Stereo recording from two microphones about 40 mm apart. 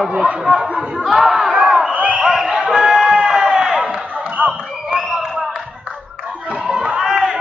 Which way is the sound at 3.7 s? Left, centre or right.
Right.